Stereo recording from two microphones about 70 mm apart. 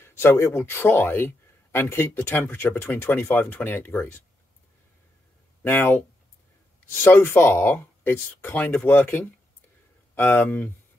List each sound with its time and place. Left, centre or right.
0.0 s speech: left
5.6 s speech: left